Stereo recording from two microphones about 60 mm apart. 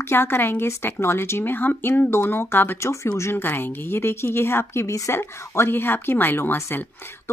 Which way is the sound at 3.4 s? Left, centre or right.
Left.